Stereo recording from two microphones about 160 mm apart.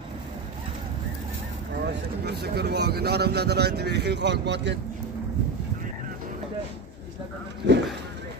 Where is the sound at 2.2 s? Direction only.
85° right.